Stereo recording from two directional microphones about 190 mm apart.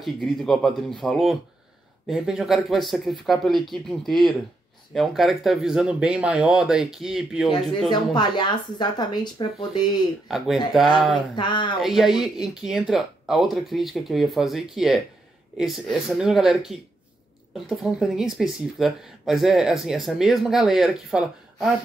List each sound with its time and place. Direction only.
0.0 s speech: centre (ahead or behind)
7.9 s speech: 25° left (ahead or behind)
10.2 s speech: centre (ahead or behind)
11.3 s speech: 25° left (ahead or behind)
11.8 s speech: centre (ahead or behind)